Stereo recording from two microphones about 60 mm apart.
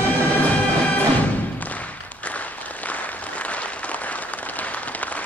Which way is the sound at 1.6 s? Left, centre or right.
Left.